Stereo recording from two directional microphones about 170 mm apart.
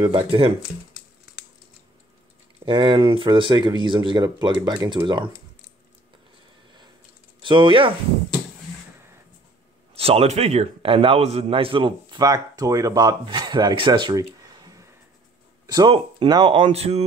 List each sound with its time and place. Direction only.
0.0 s a man's voice: 30° right (ahead or behind)
2.6 s a man's voice: 30° right (ahead or behind)
7.4 s speech: 30° right (ahead or behind)
9.9 s a man's voice: 35° right (ahead or behind)